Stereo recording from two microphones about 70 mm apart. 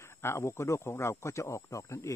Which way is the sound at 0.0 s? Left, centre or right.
Left.